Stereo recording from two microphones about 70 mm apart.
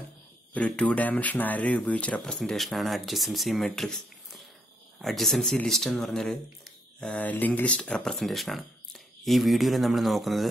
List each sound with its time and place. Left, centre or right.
0.6 s speech: centre
2.3 s speech: centre
7.0 s speech: centre